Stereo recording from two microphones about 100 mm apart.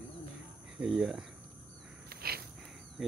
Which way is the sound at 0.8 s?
5° right (ahead or behind).